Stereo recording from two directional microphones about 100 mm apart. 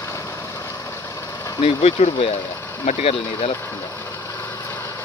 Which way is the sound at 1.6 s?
80° left.